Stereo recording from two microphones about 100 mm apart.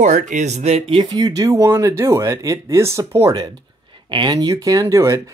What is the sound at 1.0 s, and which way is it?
Speech, 40° right (ahead or behind).